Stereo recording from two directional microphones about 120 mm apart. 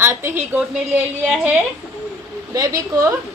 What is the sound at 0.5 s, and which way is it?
Speech, 10° right (ahead or behind).